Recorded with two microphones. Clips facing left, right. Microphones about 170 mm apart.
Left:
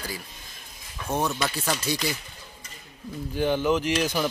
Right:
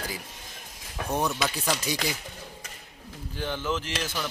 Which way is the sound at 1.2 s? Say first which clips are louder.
Left 1 dB; centre (ahead or behind).